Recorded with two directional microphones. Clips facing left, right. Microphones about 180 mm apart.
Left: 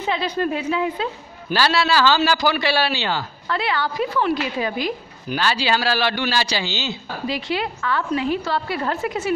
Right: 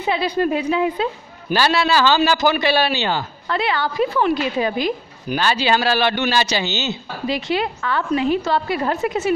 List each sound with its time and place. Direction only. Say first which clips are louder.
0.0 s a woman's voice: right 3 dB; 10° right (ahead or behind)